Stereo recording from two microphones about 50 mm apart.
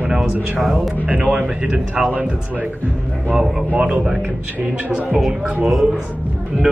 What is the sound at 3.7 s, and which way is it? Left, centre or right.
Speech, right.